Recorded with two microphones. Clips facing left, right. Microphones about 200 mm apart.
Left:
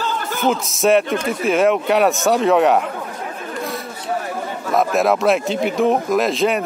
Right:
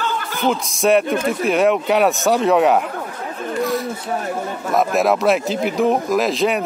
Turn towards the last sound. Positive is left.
turn(degrees=0)  # may be behind; listen again after turning